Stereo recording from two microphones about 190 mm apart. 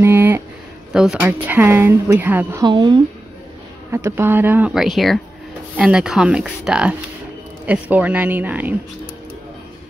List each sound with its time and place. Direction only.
0.0 s a sound: 10° right (ahead or behind)
0.9 s a woman's voice: 5° right (ahead or behind)
2.6 s speech: 25° right (ahead or behind)
3.9 s a woman's voice: 15° right (ahead or behind)